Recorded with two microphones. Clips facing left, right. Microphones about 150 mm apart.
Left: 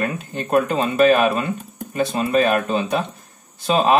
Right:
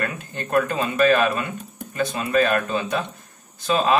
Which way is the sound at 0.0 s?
20° left (ahead or behind).